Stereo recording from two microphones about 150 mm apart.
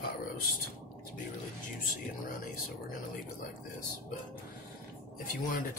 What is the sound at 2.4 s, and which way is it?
Speech, 65° left (ahead or behind).